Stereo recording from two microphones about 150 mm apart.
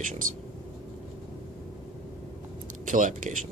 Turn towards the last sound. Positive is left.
turn(degrees=-60)  # may be behind; listen again after turning